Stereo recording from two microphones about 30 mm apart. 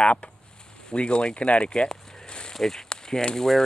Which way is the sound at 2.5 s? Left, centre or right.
Centre.